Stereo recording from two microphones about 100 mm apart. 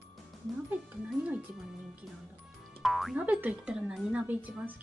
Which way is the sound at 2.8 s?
Centre (ahead or behind).